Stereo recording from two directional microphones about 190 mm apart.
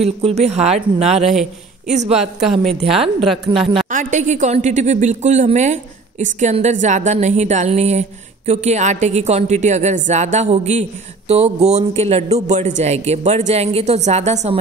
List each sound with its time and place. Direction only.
0.0 s speech: 35° right (ahead or behind)
1.3 s a man's voice: centre (ahead or behind)
2.0 s speech: 35° right (ahead or behind)
2.4 s a woman's voice: centre (ahead or behind)
3.9 s speech: 40° right (ahead or behind)